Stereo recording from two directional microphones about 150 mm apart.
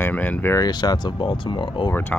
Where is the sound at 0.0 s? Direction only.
10° left (ahead or behind).